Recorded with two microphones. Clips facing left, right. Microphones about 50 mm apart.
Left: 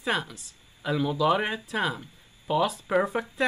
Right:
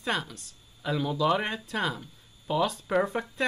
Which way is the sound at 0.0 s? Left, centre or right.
Centre.